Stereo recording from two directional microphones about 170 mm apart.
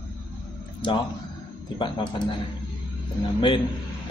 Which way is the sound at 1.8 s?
25° left (ahead or behind).